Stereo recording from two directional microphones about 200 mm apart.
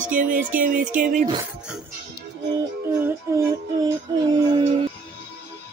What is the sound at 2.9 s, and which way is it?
Music, 15° right (ahead or behind).